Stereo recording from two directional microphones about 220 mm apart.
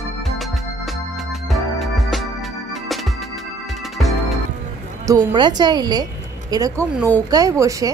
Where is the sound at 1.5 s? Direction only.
Centre (ahead or behind).